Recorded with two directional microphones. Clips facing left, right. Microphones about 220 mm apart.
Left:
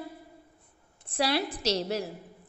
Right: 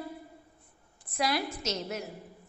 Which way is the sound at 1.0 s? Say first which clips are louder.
Left 3 dB; 30° left (ahead or behind).